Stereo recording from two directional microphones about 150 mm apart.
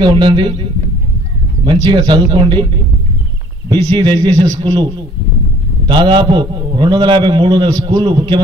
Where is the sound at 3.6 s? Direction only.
30° right (ahead or behind).